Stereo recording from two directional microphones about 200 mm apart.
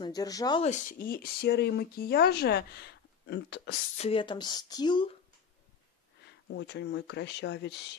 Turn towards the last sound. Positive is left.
turn(degrees=60)  # may be behind; listen again after turning